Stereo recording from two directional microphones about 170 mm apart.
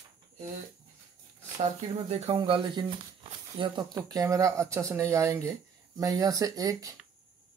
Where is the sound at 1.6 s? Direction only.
40° right (ahead or behind); by 7.0 s 20° right (ahead or behind).